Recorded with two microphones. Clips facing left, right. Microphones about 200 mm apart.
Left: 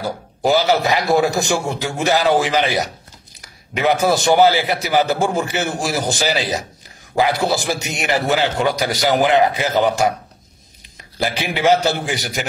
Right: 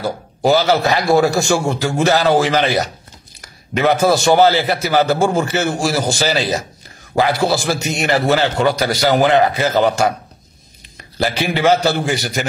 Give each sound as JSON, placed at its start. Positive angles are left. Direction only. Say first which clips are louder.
{"t": 0.4, "sound": "a man's voice", "louder": "right 2 dB", "side_deg": 15}
{"t": 11.1, "sound": "a man's voice", "louder": "right 3 dB", "side_deg": 15}